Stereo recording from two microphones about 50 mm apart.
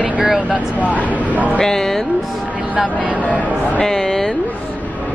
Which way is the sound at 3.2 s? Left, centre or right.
Left.